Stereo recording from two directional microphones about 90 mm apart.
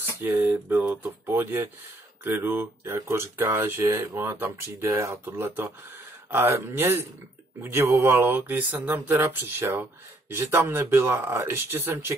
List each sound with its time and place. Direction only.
0.0 s speech: 25° right (ahead or behind)